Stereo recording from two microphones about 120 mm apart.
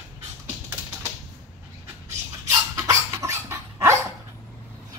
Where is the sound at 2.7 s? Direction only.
25° right (ahead or behind).